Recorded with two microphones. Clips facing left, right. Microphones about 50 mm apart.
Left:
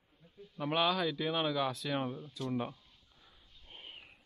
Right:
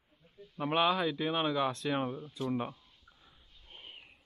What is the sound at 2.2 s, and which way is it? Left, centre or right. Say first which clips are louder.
Speech: right 3 dB; right.